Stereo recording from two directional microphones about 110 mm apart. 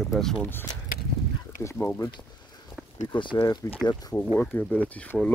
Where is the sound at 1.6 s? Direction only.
25° left (ahead or behind).